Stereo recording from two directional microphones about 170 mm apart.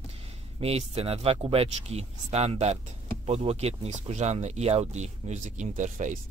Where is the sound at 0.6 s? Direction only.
35° right (ahead or behind).